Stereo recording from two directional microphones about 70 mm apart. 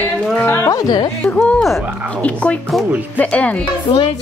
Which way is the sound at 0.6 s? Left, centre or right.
Left.